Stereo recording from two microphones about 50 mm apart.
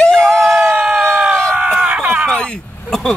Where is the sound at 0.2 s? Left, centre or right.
Centre.